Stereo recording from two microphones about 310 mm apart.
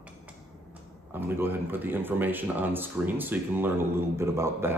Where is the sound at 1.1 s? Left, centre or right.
Centre.